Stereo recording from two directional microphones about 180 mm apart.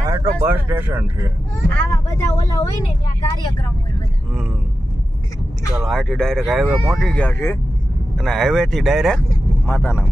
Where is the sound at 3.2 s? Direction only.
25° left (ahead or behind).